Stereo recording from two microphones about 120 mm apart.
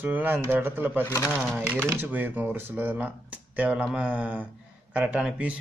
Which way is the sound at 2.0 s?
15° right (ahead or behind).